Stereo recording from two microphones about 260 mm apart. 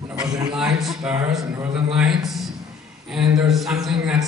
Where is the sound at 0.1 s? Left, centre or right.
Centre.